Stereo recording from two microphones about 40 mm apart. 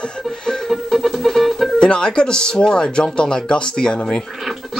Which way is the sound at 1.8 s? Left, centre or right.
Left.